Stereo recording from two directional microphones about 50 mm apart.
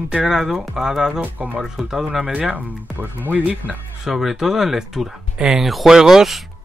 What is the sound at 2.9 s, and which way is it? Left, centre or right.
Speech, right.